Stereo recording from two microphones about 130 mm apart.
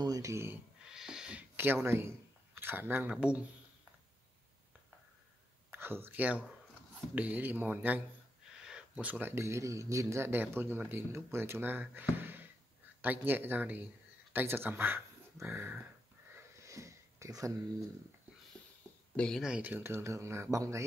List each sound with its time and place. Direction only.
0.0 s speech: 25° right (ahead or behind)
0.8 s owl: 5° right (ahead or behind)
1.6 s speech: 15° right (ahead or behind)
5.7 s speech: 15° right (ahead or behind)
16.3 s sniff: 25° right (ahead or behind)
19.1 s speech: 5° left (ahead or behind)
19.5 s speech: 15° right (ahead or behind)